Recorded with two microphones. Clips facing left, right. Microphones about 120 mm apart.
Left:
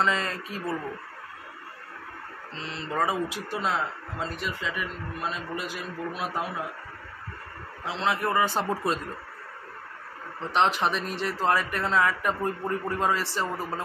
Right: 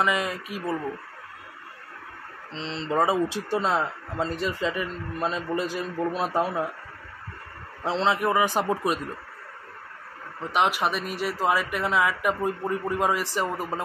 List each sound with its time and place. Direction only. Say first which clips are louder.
0.0 s speech: right 2 dB; 10° right (ahead or behind)
2.5 s speech: right 5 dB; 25° right (ahead or behind)
7.8 s a man's voice: right 5 dB; 35° right (ahead or behind)
8.1 s speech: right 1 dB; 15° right (ahead or behind)
10.5 s speech: even; 10° right (ahead or behind)